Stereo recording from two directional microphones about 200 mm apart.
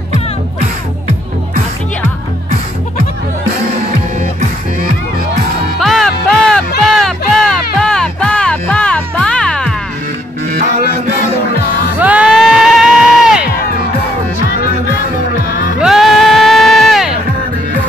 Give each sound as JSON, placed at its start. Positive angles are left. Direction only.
{"t": 5.8, "sound": "music", "side_deg": 0}
{"t": 12.0, "sound": "music", "side_deg": -5}
{"t": 15.8, "sound": "a sound", "side_deg": 0}